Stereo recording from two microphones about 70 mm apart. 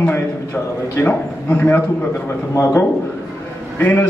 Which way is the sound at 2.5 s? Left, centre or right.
Left.